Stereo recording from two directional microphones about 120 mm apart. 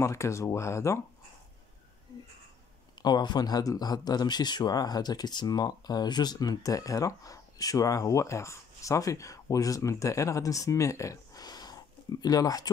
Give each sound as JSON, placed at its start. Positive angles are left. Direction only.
{"t": 0.0, "sound": "speech", "side_deg": 25}
{"t": 3.0, "sound": "speech", "side_deg": 35}